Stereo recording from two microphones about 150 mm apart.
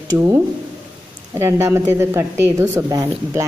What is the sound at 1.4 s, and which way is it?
A woman's voice, 15° right (ahead or behind).